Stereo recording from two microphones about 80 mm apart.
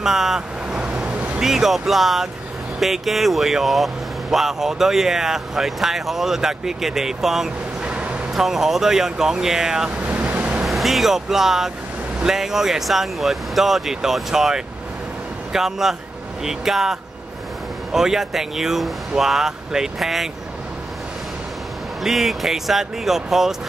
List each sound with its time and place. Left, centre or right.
0.0 s vehicle: centre
1.4 s speech: centre
10.0 s vehicle: centre
10.6 s speech: centre
22.0 s speech: centre